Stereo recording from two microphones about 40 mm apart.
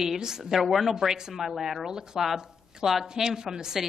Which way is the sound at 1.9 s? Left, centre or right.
Centre.